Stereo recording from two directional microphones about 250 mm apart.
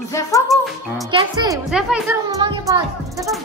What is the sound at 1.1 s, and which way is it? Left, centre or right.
Speech, centre.